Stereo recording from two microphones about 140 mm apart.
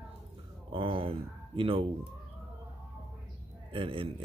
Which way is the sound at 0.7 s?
40° right (ahead or behind).